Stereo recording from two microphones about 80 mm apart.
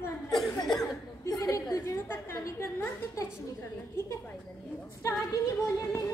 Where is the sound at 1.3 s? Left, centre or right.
Left.